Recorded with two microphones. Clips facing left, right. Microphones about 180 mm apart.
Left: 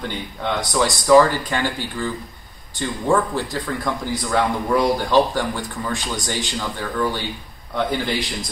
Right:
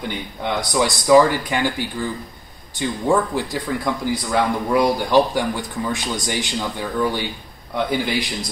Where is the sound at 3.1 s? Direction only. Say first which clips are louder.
Even; 15° right (ahead or behind).